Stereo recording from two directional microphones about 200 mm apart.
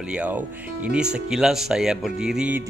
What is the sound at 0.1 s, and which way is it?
Speech, 5° right (ahead or behind).